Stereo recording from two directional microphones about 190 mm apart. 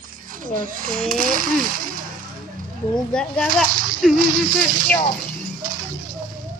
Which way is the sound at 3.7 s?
50° right (ahead or behind).